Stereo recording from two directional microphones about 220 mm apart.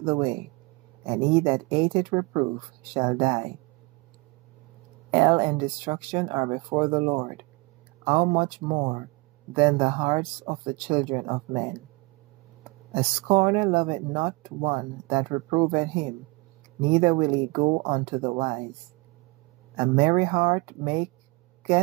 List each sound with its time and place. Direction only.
0.0 s speech: 20° right (ahead or behind)
5.1 s speech: 20° right (ahead or behind)
12.9 s speech: 20° right (ahead or behind)
19.8 s speech: 20° right (ahead or behind)